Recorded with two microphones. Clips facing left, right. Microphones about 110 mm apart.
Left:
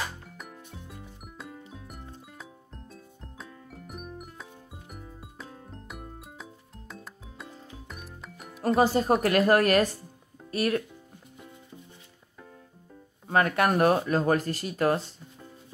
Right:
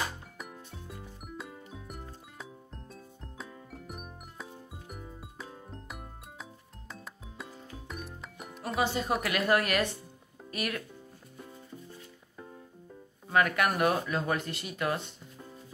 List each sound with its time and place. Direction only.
0.8 s music: centre (ahead or behind)
8.6 s speech: 40° left (ahead or behind)
13.3 s speech: 35° left (ahead or behind)